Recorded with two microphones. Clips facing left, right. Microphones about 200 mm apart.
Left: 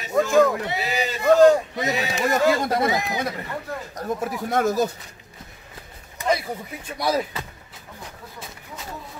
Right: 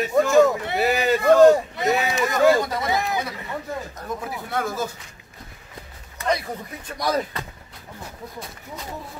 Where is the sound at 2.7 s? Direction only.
55° left (ahead or behind).